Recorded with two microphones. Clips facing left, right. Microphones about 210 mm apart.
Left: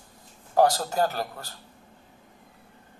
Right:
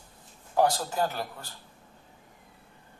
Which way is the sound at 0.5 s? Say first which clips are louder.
Left 3 dB; 40° left (ahead or behind).